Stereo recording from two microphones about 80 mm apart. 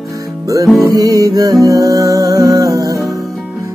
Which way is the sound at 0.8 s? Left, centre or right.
Right.